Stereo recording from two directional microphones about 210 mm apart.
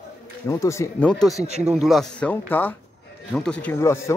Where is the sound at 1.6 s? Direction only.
Centre (ahead or behind).